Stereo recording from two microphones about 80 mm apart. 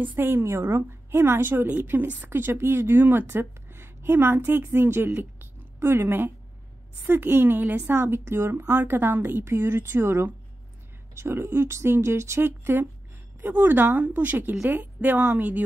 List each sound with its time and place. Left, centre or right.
0.0 s a woman's voice: right